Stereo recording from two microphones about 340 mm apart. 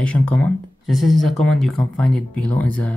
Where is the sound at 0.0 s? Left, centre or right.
Centre.